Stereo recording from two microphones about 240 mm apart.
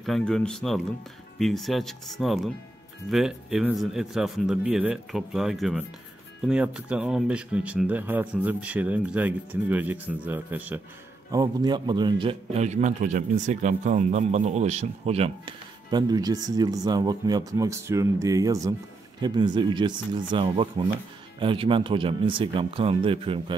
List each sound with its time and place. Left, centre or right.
0.0 s a man's voice: centre; by 23.5 s right